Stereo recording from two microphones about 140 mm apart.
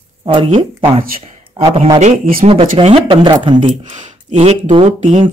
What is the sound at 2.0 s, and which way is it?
Speech, 90° right.